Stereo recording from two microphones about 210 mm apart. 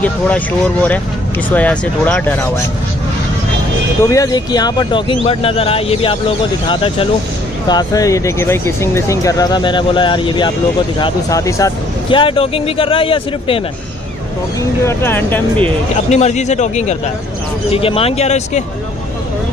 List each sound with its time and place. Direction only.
0.0 s speech: 5° left (ahead or behind)
4.0 s speech: 15° left (ahead or behind)
14.9 s speech: 10° left (ahead or behind)
16.1 s a man's voice: 30° left (ahead or behind)